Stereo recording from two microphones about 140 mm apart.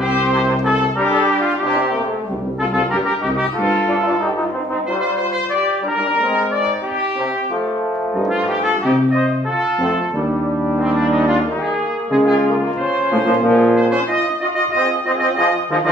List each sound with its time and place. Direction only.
8.6 s brass instrument: centre (ahead or behind)
11.0 s brass instrument: 5° right (ahead or behind)
13.5 s brass instrument: 10° left (ahead or behind)
13.7 s brass instrument: 5° right (ahead or behind)